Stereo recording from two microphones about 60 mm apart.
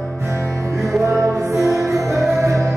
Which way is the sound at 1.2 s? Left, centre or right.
Right.